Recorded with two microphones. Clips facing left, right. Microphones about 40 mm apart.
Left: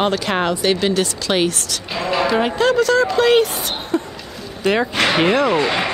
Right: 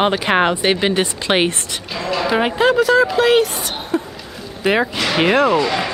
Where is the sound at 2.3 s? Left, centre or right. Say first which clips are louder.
Right 3 dB; centre.